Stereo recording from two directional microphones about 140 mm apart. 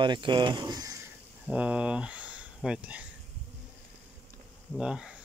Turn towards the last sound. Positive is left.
turn(degrees=-5)  # may be behind; listen again after turning